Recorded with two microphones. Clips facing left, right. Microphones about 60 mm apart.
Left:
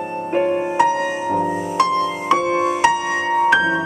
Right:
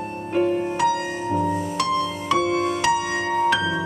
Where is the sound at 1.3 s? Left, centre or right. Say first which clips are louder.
Right 1 dB; left.